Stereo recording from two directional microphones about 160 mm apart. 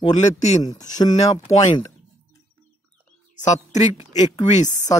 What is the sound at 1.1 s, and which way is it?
Speech, 45° left (ahead or behind).